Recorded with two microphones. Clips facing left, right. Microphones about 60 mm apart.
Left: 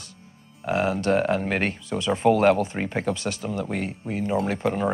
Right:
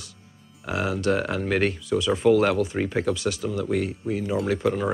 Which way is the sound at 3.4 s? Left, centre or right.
Centre.